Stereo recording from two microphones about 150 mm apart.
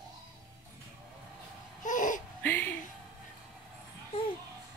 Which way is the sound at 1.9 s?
60° left (ahead or behind).